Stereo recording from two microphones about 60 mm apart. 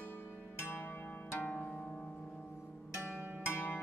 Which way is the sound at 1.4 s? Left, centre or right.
Left.